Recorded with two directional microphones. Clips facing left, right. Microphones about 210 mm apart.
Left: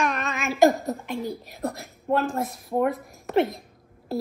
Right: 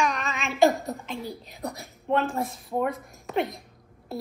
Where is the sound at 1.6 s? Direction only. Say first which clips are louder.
Left 4 dB; centre (ahead or behind).